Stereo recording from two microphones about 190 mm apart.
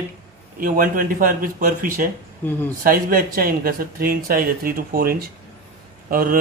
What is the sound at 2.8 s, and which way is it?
Speech, 50° right (ahead or behind).